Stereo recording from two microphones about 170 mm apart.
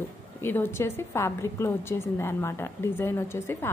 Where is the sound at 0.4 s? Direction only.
15° left (ahead or behind).